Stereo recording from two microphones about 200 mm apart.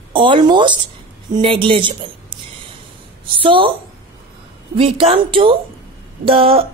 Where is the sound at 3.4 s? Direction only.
25° right (ahead or behind).